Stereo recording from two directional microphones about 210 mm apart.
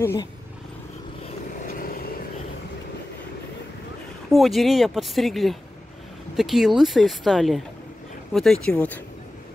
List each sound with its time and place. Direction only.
0.0 s speech: 15° left (ahead or behind)
1.2 s vehicle: 40° left (ahead or behind)
4.3 s speech: centre (ahead or behind)